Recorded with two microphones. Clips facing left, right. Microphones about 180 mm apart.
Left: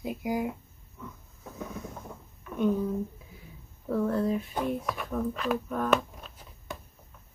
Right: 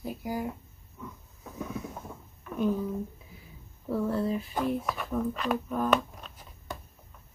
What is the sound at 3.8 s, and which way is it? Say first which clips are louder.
Speech: left 2 dB; 5° right (ahead or behind).